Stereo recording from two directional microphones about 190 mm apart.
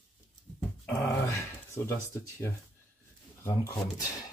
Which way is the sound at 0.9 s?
15° left (ahead or behind).